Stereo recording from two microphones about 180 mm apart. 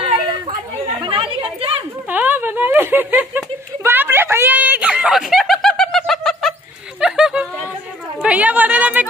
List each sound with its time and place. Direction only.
0.0 s chatter: 30° right (ahead or behind)
2.0 s snicker: 10° right (ahead or behind)
8.2 s a sound: 10° right (ahead or behind)